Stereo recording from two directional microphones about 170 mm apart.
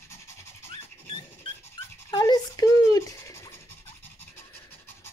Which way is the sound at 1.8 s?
30° left (ahead or behind).